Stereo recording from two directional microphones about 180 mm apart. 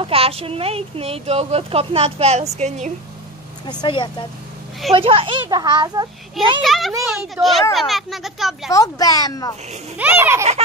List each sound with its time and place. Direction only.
0.0 s a woman's voice: 30° right (ahead or behind)
3.6 s speech: 25° left (ahead or behind)
4.9 s a child's voice: 30° right (ahead or behind)
6.6 s speech: centre (ahead or behind)
8.7 s speech: 20° left (ahead or behind)
9.9 s baby laughter: 10° right (ahead or behind)